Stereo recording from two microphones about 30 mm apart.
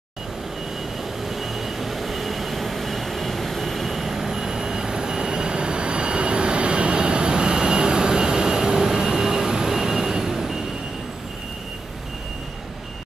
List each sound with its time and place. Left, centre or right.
1.3 s vehicle: centre